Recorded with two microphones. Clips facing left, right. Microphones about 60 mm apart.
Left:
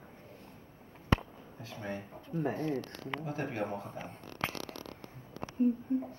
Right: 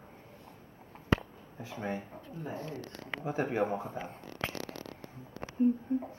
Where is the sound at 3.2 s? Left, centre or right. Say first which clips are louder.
Right 7 dB; centre.